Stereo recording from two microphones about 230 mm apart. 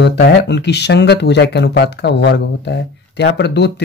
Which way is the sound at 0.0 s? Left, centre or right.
Left.